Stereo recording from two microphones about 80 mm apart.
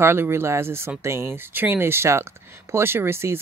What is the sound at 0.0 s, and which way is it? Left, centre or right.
Speech, right.